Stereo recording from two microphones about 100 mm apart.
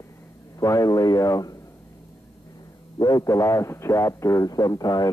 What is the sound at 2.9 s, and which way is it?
Speech, 40° left (ahead or behind).